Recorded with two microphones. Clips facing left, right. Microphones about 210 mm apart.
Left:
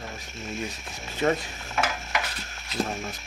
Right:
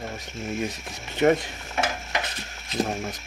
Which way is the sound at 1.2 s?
25° right (ahead or behind).